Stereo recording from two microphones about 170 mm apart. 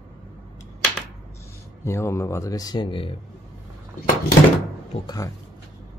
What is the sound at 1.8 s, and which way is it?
Speech, 15° left (ahead or behind).